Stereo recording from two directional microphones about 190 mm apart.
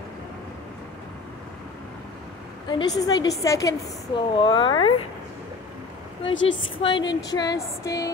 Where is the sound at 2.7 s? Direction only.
20° left (ahead or behind).